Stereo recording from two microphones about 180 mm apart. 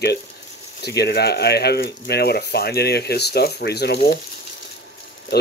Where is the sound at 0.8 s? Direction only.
65° left (ahead or behind).